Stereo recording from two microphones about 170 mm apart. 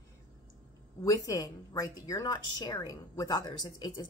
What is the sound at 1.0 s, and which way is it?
Speech, 20° left (ahead or behind).